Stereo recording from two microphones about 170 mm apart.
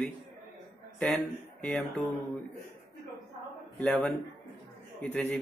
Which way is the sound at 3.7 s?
10° left (ahead or behind).